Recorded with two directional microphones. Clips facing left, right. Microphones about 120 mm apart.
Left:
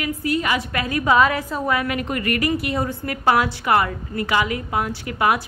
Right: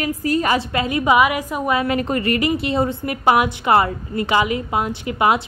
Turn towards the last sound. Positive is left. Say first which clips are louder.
# right 2 dB
turn(degrees=-20)  # may be behind; listen again after turning